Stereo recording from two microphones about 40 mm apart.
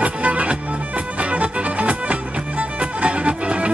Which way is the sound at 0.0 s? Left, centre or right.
Right.